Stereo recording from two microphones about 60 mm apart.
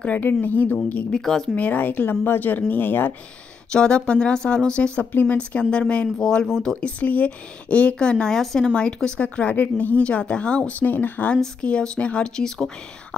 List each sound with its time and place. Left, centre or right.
0.0 s speech: left
1.2 s speech: centre
1.5 s speech: left
3.7 s speech: centre
5.1 s speech: left
5.6 s speech: centre
11.6 s speech: centre